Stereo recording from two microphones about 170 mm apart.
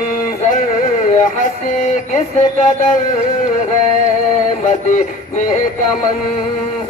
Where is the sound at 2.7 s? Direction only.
50° left (ahead or behind).